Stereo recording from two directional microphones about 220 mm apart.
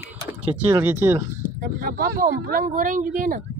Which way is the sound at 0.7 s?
10° right (ahead or behind).